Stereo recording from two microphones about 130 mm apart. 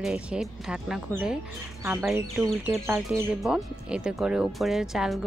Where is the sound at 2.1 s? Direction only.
15° right (ahead or behind).